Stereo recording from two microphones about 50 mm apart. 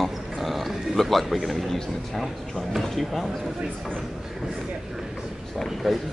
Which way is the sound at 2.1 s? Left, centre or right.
Centre.